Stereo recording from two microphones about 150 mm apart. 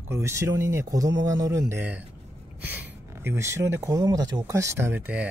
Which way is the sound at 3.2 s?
15° right (ahead or behind).